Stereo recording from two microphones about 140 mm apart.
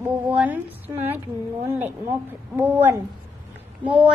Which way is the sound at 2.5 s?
15° right (ahead or behind).